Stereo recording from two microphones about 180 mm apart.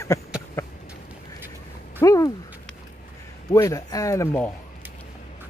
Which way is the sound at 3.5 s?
20° left (ahead or behind).